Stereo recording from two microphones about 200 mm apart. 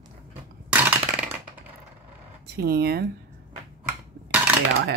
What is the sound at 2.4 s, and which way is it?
Speech, 50° right (ahead or behind).